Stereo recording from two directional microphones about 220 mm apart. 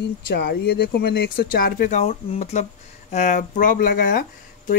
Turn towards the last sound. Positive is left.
turn(degrees=40)  # may be behind; listen again after turning